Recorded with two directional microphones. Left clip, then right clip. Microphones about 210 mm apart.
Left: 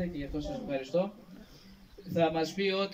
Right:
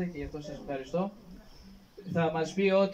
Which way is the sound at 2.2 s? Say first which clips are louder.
Even; 10° right (ahead or behind).